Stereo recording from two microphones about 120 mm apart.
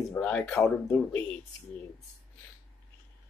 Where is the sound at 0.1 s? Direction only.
10° left (ahead or behind).